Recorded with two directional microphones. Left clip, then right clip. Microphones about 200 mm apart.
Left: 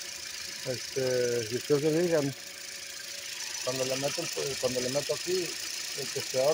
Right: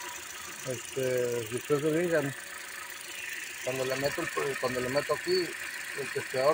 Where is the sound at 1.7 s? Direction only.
15° left (ahead or behind).